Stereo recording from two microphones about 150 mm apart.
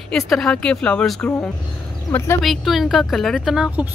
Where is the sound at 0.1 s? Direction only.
Centre (ahead or behind); by 2.3 s 15° left (ahead or behind).